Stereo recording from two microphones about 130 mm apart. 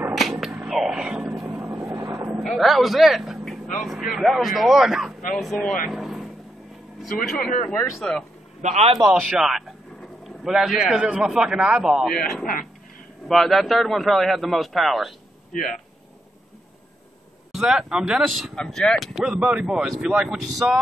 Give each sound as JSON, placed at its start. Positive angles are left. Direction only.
{"t": 0.1, "sound": "whip", "side_deg": 0}
{"t": 1.4, "sound": "vehicle", "side_deg": -20}
{"t": 2.4, "sound": "speech", "side_deg": 0}
{"t": 5.9, "sound": "vehicle", "side_deg": 0}
{"t": 7.2, "sound": "speech", "side_deg": 5}
{"t": 8.6, "sound": "a man's voice", "side_deg": -55}
{"t": 9.1, "sound": "speech", "side_deg": -5}
{"t": 13.3, "sound": "speech", "side_deg": 0}
{"t": 17.5, "sound": "speech", "side_deg": -5}